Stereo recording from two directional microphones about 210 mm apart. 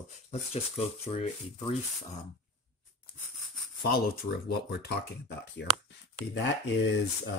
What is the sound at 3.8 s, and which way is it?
Speech, 50° left (ahead or behind).